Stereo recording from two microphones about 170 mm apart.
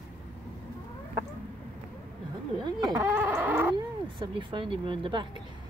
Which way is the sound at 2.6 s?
25° right (ahead or behind).